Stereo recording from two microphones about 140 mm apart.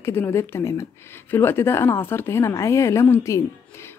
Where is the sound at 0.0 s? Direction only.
15° left (ahead or behind).